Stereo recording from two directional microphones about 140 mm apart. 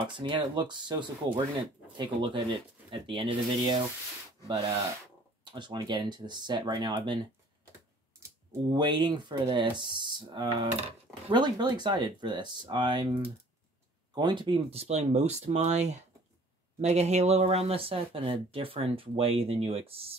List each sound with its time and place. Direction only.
0.0 s speech: 35° right (ahead or behind)
5.4 s speech: 35° right (ahead or behind)
8.7 s speech: 35° right (ahead or behind)
10.8 s speech: 50° right (ahead or behind)
11.3 s speech: 30° right (ahead or behind)